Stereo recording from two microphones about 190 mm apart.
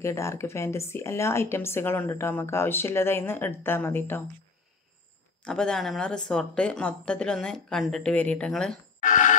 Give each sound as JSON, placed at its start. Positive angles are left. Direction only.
{"t": 0.0, "sound": "a woman's voice", "side_deg": 15}
{"t": 5.4, "sound": "speech", "side_deg": 5}
{"t": 9.0, "sound": "a sound", "side_deg": 40}